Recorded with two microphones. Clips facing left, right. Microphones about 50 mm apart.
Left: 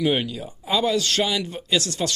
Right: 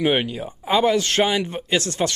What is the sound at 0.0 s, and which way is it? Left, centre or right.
Speech, right.